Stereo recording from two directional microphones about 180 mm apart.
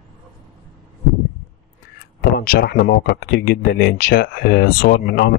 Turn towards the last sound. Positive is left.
turn(degrees=55)  # may be behind; listen again after turning